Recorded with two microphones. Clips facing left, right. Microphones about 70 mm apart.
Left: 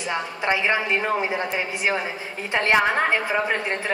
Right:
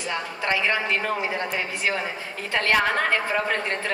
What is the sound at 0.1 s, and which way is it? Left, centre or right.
A woman's voice, centre.